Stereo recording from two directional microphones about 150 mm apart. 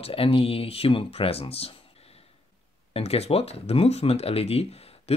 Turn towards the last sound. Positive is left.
turn(degrees=40)  # may be behind; listen again after turning